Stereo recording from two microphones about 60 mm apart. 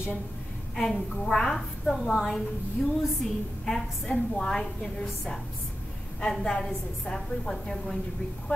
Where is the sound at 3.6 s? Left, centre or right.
Centre.